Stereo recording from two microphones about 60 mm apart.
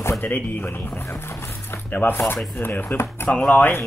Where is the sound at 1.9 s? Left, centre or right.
Left.